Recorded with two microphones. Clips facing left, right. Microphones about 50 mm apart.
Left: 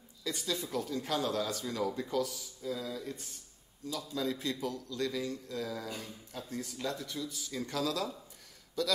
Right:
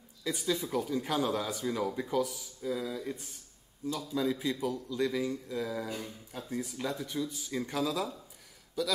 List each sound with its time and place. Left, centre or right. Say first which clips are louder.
0.2 s a man's voice: right 4 dB; centre